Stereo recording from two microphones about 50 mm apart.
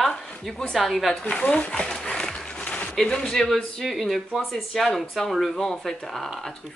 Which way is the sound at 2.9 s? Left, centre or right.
Centre.